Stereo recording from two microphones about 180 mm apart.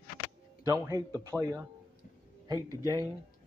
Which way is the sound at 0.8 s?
20° right (ahead or behind).